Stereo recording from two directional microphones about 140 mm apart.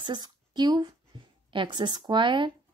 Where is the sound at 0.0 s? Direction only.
30° right (ahead or behind).